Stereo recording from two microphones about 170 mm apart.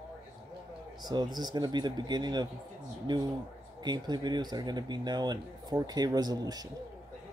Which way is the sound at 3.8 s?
25° right (ahead or behind).